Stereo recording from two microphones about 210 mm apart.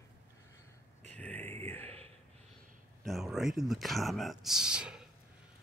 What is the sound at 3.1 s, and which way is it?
Speech, centre (ahead or behind).